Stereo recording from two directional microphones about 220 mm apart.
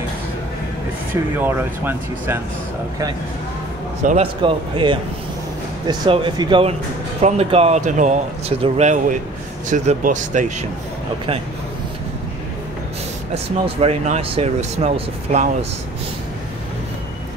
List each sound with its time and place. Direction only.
1.1 s speech: 10° right (ahead or behind)
4.0 s speech: 35° right (ahead or behind)
4.4 s speech: 25° right (ahead or behind)
13.3 s speech: 25° right (ahead or behind)